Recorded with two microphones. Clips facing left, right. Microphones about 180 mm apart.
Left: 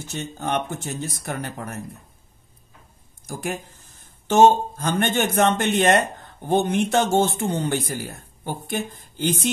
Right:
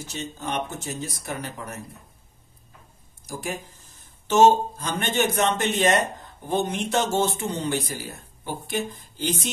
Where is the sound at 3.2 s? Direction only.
60° left (ahead or behind).